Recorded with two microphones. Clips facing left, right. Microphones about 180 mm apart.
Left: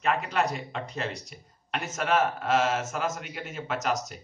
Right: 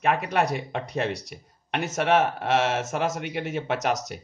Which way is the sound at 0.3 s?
55° right (ahead or behind).